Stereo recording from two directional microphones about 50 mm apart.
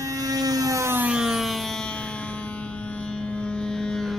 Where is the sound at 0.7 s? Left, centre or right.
Right.